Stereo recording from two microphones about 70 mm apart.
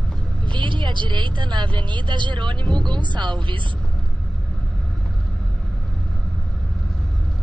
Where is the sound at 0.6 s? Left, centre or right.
Right.